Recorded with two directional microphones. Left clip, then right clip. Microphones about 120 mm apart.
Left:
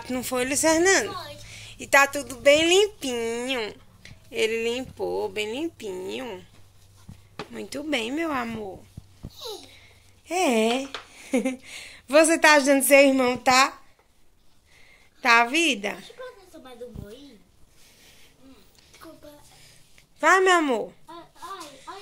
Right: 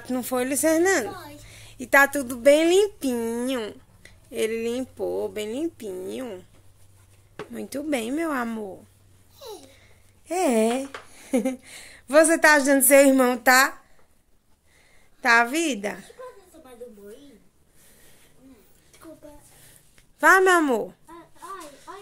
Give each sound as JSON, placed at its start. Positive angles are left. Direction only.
{"t": 0.0, "sound": "a woman's voice", "side_deg": -25}
{"t": 2.6, "sound": "a woman's voice", "side_deg": -25}
{"t": 7.5, "sound": "a woman's voice", "side_deg": -25}
{"t": 10.2, "sound": "a woman's voice", "side_deg": -40}
{"t": 13.0, "sound": "speech", "side_deg": -70}
{"t": 15.1, "sound": "a woman's voice", "side_deg": -40}
{"t": 20.2, "sound": "a woman's voice", "side_deg": -50}